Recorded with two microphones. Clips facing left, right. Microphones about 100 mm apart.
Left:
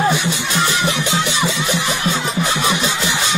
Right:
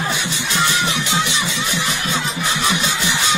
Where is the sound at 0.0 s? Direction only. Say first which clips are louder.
Left 6 dB; 45° left (ahead or behind).